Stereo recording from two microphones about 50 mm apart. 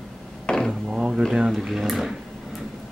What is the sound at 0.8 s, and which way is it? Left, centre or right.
Speech, centre.